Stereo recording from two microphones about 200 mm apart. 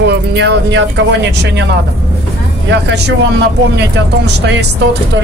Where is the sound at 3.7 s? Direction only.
60° right (ahead or behind).